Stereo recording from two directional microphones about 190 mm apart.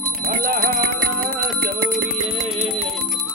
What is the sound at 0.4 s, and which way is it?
Music, 50° right (ahead or behind).